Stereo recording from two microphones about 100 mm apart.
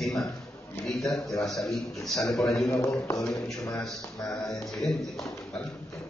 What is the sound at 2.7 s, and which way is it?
Speech, 30° left (ahead or behind).